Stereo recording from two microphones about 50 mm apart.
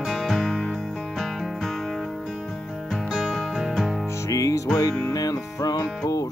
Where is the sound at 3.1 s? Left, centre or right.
Centre.